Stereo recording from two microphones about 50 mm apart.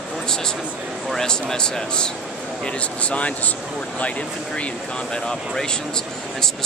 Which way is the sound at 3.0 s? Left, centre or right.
Left.